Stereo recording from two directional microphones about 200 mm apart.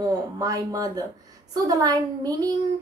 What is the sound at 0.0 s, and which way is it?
A woman's voice, 15° right (ahead or behind).